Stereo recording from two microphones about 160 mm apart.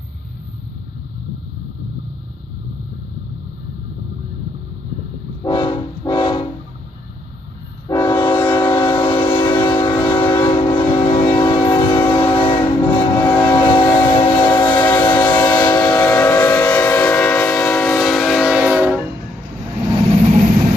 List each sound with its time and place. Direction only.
5.4 s train: 30° left (ahead or behind)
7.9 s train: 20° left (ahead or behind)
8.3 s train: 30° left (ahead or behind)
15.9 s train: 10° left (ahead or behind); by 18.9 s 5° right (ahead or behind)